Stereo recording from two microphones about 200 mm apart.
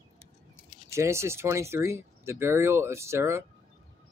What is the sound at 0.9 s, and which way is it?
Speech, 15° right (ahead or behind).